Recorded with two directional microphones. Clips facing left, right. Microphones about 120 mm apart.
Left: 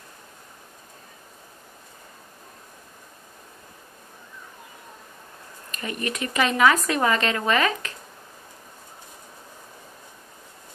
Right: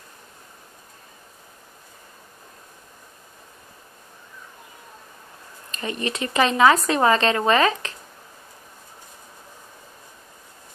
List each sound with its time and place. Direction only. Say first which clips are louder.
5.7 s speech: right 2 dB; 30° right (ahead or behind)